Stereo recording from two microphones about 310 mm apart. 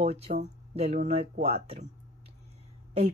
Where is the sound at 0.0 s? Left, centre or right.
Right.